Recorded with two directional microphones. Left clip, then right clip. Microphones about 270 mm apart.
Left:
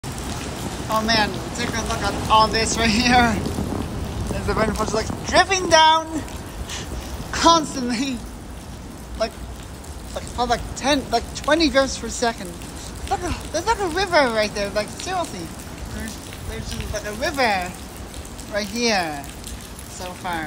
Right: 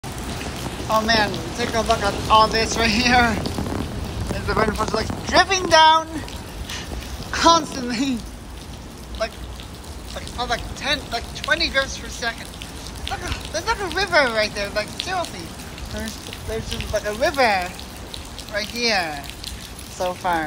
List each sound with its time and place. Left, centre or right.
0.8 s speech: centre
4.5 s speech: centre
7.3 s speech: centre
9.2 s speech: centre
16.7 s speech: centre
20.0 s speech: centre